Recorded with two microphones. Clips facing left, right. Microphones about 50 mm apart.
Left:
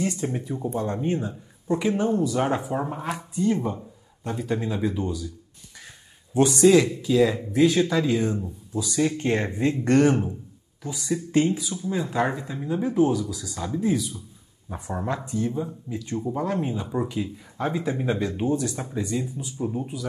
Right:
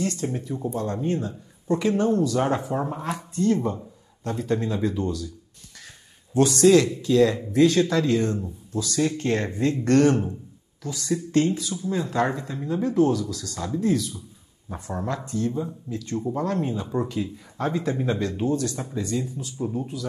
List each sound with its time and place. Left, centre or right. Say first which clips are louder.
0.0 s a man's voice: even; centre
6.3 s a man's voice: even; centre